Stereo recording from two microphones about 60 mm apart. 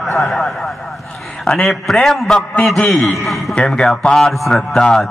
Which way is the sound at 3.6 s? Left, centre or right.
Centre.